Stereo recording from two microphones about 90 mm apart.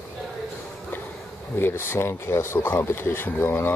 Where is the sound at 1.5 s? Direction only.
25° left (ahead or behind).